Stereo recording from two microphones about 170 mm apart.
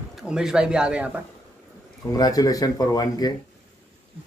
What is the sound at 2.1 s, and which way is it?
Speech, 20° left (ahead or behind).